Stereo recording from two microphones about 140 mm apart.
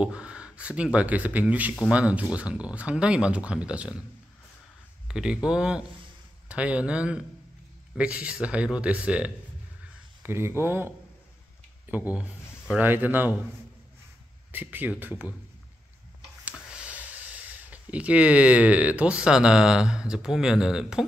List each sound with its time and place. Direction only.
0.0 s speech: 5° right (ahead or behind)
5.0 s speech: 5° right (ahead or behind)
14.5 s speech: 15° right (ahead or behind)
16.4 s speech: 10° right (ahead or behind)